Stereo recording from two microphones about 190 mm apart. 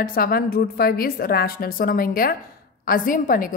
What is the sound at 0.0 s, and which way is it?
A woman's voice, 50° left (ahead or behind).